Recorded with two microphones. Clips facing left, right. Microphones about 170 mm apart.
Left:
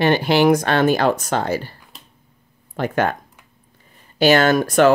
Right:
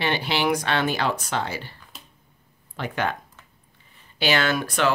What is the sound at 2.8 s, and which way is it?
Speech, 45° left (ahead or behind).